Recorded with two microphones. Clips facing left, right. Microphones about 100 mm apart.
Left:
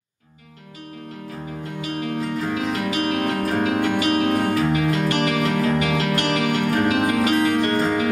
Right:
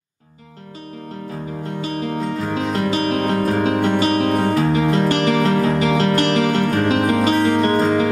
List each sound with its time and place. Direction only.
1.8 s music: 30° right (ahead or behind)